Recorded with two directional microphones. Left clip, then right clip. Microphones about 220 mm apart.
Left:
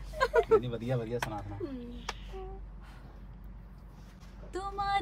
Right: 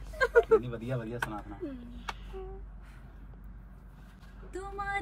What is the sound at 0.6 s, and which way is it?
Speech, 45° left (ahead or behind).